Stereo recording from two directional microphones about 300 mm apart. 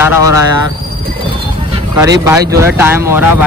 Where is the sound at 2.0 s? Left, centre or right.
Centre.